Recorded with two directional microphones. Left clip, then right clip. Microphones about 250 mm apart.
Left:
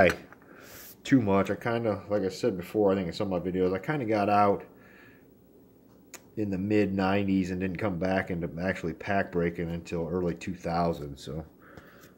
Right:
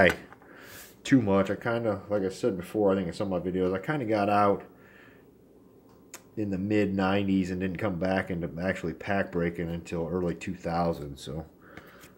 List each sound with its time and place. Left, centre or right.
0.0 s speech: centre
6.1 s speech: centre